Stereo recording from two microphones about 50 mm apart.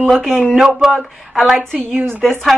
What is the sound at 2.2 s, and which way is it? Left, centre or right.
Speech, centre.